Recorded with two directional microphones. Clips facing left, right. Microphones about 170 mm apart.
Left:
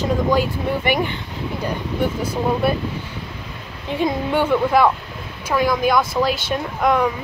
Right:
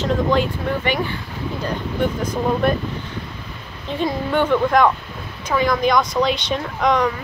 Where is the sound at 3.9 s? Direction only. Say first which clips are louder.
Left 1 dB; 15° left (ahead or behind).